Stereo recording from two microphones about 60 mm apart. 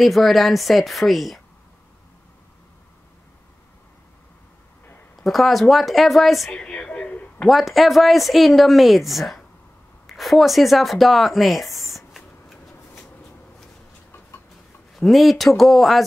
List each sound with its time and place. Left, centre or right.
0.0 s speech: centre
5.1 s speech: centre
6.6 s a sound: centre
7.4 s speech: centre
10.0 s a sound: centre
15.0 s speech: centre